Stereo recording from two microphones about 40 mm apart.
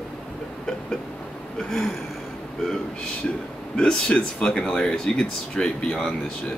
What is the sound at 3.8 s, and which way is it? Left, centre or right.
Speech, centre.